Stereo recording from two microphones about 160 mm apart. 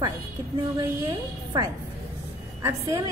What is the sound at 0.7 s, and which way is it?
Speech, 20° right (ahead or behind).